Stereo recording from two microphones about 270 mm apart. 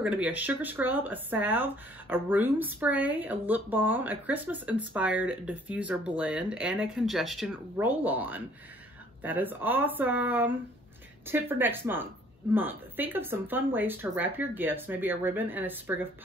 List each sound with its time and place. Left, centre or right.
0.0 s speech: centre